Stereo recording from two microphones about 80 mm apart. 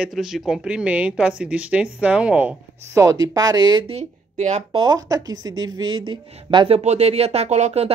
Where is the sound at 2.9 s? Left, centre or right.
Right.